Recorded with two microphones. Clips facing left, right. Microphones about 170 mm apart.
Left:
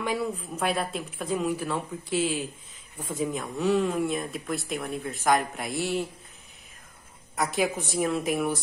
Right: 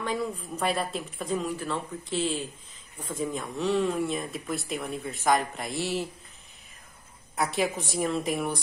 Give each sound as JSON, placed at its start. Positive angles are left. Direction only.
{"t": 0.0, "sound": "speech", "side_deg": 10}
{"t": 7.3, "sound": "speech", "side_deg": 0}